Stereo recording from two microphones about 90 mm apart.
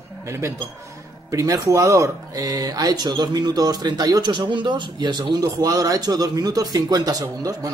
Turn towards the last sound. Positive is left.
turn(degrees=-45)  # may be behind; listen again after turning